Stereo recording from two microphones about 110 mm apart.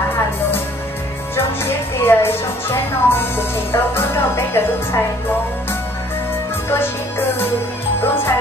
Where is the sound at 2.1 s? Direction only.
20° left (ahead or behind).